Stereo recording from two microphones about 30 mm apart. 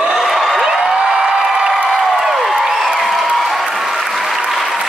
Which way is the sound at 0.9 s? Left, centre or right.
Right.